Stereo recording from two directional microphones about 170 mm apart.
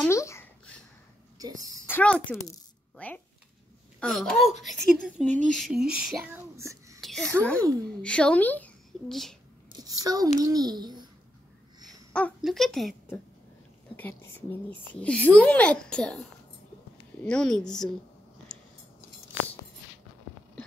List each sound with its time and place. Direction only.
0.0 s babbling: 15° left (ahead or behind)
1.9 s speech: 10° left (ahead or behind)
6.5 s a sound: 15° right (ahead or behind)
7.0 s a sound: centre (ahead or behind)
8.0 s a child's voice: 5° left (ahead or behind)
10.0 s a child's voice: 20° right (ahead or behind)
12.1 s a sound: 5° left (ahead or behind)
12.4 s speech: centre (ahead or behind)
13.9 s speech: 10° left (ahead or behind)